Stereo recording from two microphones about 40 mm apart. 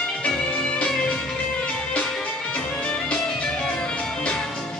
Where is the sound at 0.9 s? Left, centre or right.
Left.